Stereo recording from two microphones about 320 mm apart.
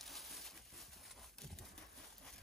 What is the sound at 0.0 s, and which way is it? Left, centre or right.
Horse, centre.